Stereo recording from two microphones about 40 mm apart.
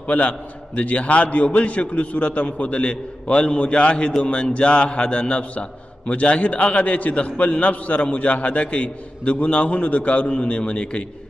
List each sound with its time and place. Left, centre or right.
0.0 s a man's voice: left